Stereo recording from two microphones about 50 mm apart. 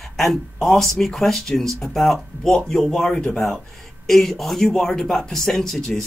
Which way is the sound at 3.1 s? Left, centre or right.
Left.